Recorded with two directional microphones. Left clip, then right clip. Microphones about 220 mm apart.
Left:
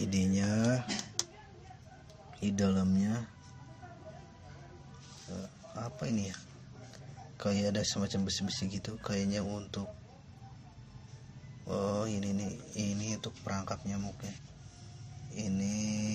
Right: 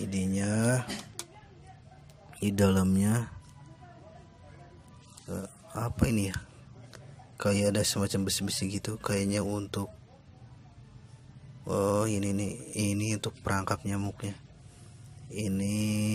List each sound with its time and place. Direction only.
0.0 s speech: 5° right (ahead or behind)
2.4 s a man's voice: 25° right (ahead or behind)
5.8 s a man's voice: 30° right (ahead or behind)
11.6 s a man's voice: 25° right (ahead or behind)
15.3 s mantra: 35° right (ahead or behind)